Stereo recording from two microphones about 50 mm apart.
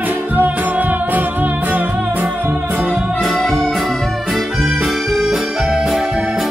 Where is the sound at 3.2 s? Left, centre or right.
Centre.